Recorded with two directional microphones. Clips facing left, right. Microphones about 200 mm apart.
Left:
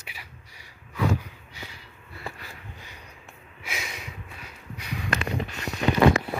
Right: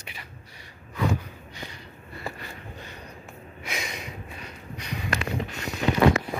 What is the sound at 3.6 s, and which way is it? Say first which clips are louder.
Snort: right 2 dB; 5° left (ahead or behind).